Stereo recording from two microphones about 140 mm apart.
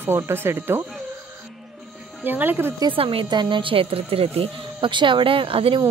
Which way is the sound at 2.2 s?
15° right (ahead or behind).